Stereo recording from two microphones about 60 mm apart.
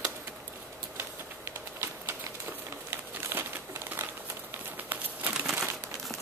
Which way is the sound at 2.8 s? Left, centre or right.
Right.